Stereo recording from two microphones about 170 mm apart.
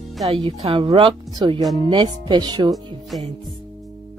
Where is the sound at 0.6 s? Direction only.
35° right (ahead or behind).